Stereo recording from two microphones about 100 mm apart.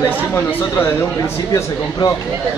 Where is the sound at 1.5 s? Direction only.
40° left (ahead or behind).